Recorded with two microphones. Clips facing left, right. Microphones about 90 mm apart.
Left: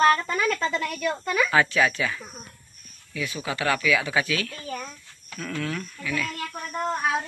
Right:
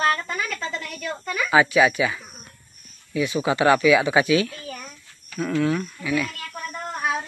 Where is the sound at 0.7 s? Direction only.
Centre (ahead or behind).